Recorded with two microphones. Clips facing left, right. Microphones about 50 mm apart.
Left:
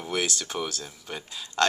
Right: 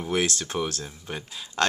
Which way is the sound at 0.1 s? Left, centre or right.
Right.